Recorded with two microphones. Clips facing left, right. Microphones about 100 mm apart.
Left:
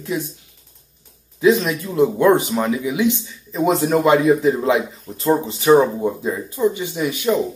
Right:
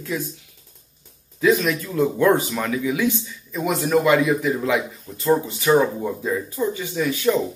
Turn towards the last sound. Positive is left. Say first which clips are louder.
# left 1 dB
turn(degrees=20)  # may be behind; listen again after turning